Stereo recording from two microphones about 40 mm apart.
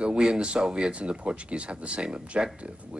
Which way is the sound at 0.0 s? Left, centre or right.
Right.